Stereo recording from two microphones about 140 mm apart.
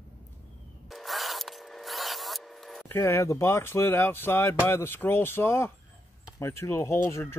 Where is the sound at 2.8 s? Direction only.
15° left (ahead or behind).